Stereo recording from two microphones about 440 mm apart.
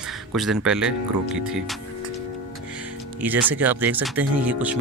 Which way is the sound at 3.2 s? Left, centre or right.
Centre.